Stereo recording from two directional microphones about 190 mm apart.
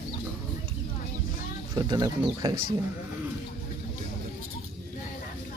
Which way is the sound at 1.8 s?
20° right (ahead or behind).